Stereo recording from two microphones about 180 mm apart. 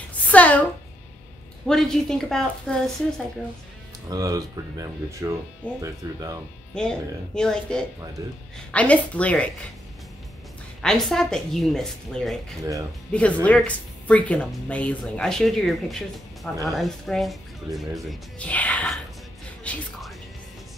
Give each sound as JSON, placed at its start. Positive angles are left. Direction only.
{"t": 0.1, "sound": "a sound", "side_deg": 10}
{"t": 1.7, "sound": "speech", "side_deg": 0}
{"t": 4.1, "sound": "speech", "side_deg": -20}
{"t": 6.7, "sound": "speech", "side_deg": 5}
{"t": 8.2, "sound": "speech", "side_deg": -20}
{"t": 8.7, "sound": "speech", "side_deg": 10}
{"t": 10.8, "sound": "speech", "side_deg": 5}